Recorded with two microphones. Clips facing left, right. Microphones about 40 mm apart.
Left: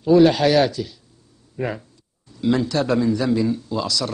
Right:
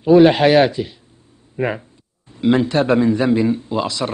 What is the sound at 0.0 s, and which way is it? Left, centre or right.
A man's voice, right.